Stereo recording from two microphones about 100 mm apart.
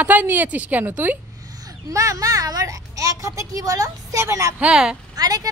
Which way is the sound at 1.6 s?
35° right (ahead or behind).